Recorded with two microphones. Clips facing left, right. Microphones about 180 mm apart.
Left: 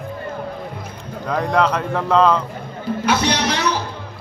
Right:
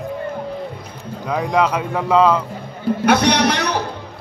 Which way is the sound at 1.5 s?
10° right (ahead or behind).